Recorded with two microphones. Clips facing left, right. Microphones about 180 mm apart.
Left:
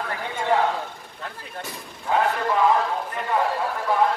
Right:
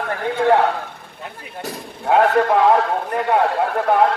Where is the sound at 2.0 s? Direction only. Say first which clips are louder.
Right 7 dB; 65° right (ahead or behind).